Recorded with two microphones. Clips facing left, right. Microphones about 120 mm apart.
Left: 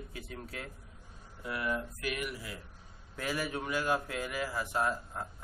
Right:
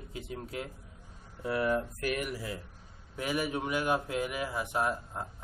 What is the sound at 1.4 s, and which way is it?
Speech, 35° right (ahead or behind).